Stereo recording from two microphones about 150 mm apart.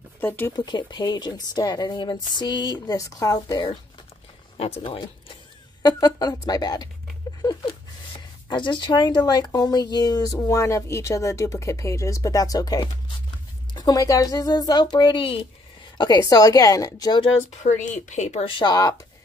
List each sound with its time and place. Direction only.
0.2 s speech: 15° left (ahead or behind)
0.5 s a woman's voice: 30° left (ahead or behind)
4.6 s a woman's voice: 40° left (ahead or behind)
8.5 s a woman's voice: 30° left (ahead or behind)
16.0 s a woman's voice: 25° left (ahead or behind)
17.6 s speech: 55° left (ahead or behind)
18.5 s a woman's voice: 30° left (ahead or behind)